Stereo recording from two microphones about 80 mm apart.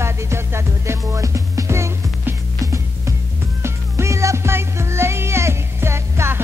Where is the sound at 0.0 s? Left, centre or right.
Right.